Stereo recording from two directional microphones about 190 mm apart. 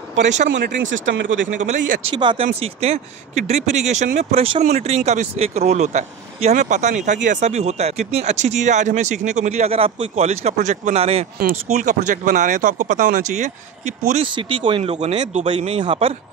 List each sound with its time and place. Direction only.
0.9 s speech: 70° right (ahead or behind)
1.6 s speech: 40° right (ahead or behind)
2.1 s speech: 25° right (ahead or behind)